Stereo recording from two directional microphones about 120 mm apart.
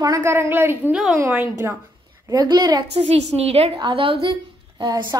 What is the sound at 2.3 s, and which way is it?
Speech, 35° right (ahead or behind).